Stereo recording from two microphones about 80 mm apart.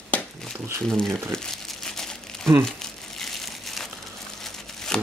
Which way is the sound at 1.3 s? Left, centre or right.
Centre.